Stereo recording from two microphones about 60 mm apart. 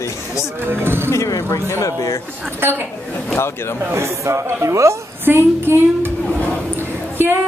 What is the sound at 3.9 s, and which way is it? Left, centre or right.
Speech, right.